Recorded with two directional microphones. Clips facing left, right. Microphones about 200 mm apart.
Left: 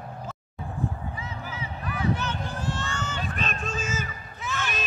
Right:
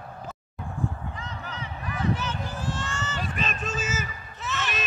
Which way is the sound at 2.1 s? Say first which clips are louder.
Even; 5° right (ahead or behind).